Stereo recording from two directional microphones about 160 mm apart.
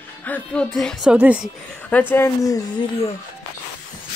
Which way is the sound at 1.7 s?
10° left (ahead or behind).